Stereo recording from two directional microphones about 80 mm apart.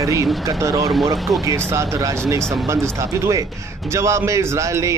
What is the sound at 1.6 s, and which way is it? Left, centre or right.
Speech, right.